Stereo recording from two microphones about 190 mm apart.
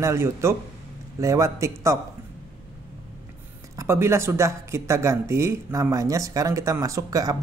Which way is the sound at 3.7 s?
15° right (ahead or behind).